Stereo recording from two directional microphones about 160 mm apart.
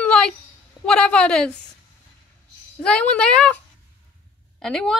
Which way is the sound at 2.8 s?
5° left (ahead or behind).